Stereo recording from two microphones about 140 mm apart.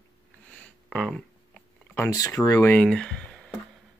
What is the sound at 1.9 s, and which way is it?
Speech, 20° left (ahead or behind).